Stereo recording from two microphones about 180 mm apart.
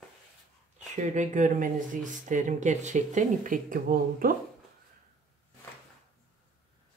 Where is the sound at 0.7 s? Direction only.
40° right (ahead or behind).